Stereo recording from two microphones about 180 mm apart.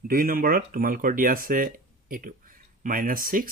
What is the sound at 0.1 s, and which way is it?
Speech, 55° right (ahead or behind).